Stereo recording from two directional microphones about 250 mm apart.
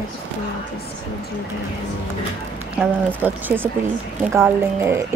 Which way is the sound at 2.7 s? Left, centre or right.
Centre.